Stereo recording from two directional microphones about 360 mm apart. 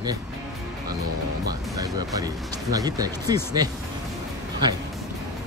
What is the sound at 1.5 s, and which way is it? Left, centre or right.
Speech, centre.